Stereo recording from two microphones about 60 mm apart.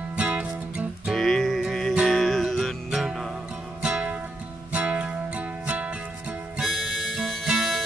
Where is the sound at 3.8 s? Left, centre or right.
Centre.